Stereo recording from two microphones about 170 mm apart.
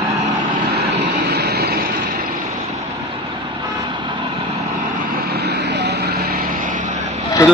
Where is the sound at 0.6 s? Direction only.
70° right (ahead or behind).